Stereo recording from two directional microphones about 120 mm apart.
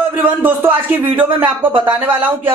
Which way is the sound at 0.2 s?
15° right (ahead or behind).